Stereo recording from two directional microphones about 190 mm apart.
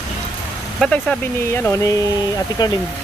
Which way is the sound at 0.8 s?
5° left (ahead or behind).